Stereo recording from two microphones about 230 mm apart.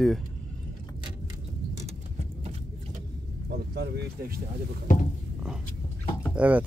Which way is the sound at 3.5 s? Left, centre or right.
Right.